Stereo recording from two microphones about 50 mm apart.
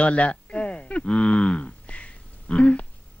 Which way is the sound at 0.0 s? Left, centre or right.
Left.